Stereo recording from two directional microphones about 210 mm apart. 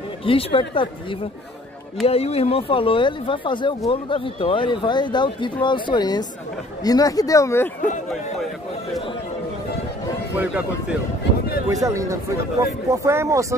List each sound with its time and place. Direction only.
0.2 s speech: 25° left (ahead or behind)
2.0 s a man's voice: 30° left (ahead or behind); by 8.2 s 5° left (ahead or behind)
10.3 s a man's voice: 5° right (ahead or behind)